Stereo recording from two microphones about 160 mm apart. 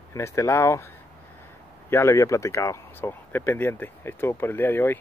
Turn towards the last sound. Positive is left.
turn(degrees=15)  # may be behind; listen again after turning